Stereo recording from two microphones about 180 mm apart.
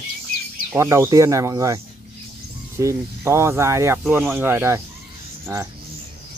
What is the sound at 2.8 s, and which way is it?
Speech, 15° right (ahead or behind).